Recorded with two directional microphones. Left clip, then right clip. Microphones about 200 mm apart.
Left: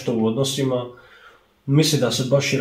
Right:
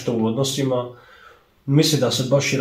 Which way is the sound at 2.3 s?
15° right (ahead or behind).